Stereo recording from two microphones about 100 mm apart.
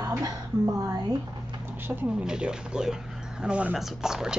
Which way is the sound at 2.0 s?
10° right (ahead or behind).